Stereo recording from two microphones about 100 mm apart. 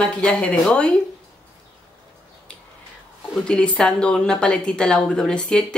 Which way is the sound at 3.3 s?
10° left (ahead or behind).